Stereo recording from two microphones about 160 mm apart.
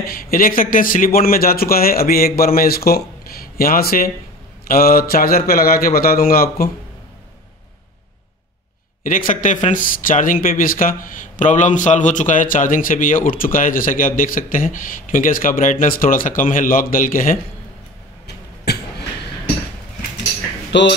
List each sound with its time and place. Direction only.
0.0 s a man's voice: 65° left (ahead or behind)
9.3 s speech: 50° left (ahead or behind)
18.2 s a sound: 90° left
20.7 s speech: 90° left